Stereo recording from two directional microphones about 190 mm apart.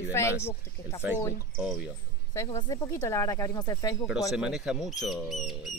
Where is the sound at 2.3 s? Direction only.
15° left (ahead or behind).